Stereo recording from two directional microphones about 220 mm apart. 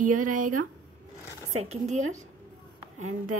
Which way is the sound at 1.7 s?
30° right (ahead or behind).